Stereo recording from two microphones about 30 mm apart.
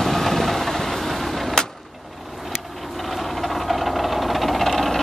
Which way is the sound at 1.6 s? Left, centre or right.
Left.